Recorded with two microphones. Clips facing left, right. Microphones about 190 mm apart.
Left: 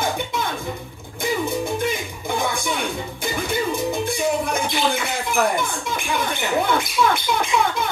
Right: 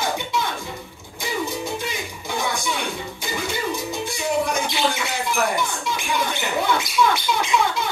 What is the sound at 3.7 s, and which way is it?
Music, 55° left (ahead or behind).